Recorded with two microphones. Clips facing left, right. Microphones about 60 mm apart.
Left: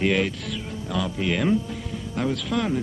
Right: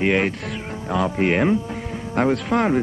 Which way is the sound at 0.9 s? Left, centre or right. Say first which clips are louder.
Right 6 dB; right.